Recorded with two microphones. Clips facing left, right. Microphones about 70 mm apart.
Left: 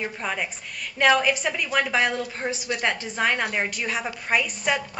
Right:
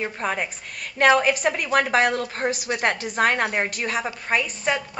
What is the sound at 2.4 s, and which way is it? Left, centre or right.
A man's voice, centre.